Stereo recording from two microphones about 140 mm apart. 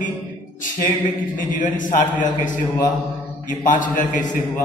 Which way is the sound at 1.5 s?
70° left (ahead or behind).